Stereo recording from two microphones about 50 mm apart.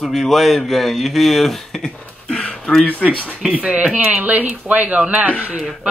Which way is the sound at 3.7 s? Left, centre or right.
Right.